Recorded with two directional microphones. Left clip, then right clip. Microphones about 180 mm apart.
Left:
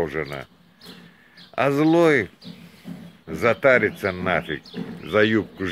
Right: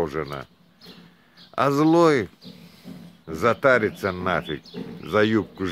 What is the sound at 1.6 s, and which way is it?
Speech, 25° right (ahead or behind).